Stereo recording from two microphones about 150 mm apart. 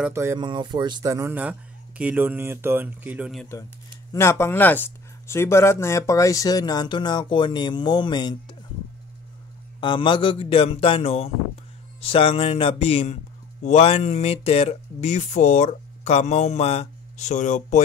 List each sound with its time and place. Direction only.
0.1 s speech: 20° right (ahead or behind)
0.4 s speech: 30° right (ahead or behind)
1.3 s speech: 10° right (ahead or behind)
4.1 s speech: 15° left (ahead or behind)
9.8 s a man's voice: 35° left (ahead or behind); by 17.8 s 55° left (ahead or behind)